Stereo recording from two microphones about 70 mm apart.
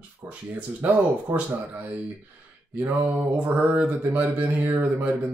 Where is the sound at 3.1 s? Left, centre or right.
Right.